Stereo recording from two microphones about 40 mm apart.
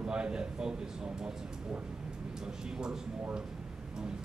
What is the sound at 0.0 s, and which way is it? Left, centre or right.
Speech, right.